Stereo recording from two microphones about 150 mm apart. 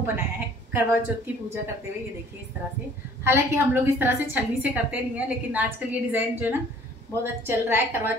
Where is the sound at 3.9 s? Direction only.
15° right (ahead or behind).